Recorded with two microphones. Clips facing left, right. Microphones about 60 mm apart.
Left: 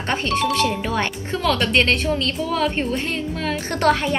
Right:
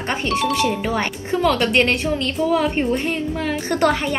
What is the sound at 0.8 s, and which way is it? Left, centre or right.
A woman's voice, right.